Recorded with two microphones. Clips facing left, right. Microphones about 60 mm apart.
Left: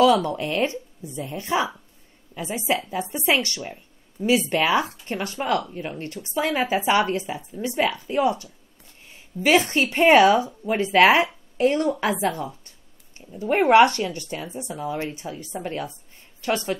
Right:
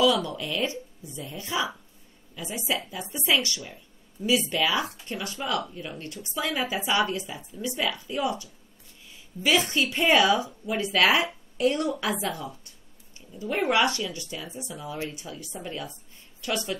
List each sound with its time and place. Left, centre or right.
0.0 s a woman's voice: left